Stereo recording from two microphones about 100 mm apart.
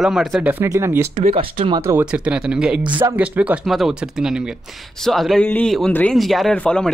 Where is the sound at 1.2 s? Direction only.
65° right (ahead or behind).